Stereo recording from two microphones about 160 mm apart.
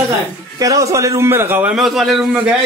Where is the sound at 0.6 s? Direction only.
20° right (ahead or behind).